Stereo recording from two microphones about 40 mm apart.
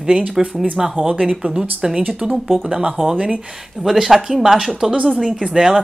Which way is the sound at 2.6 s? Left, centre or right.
Centre.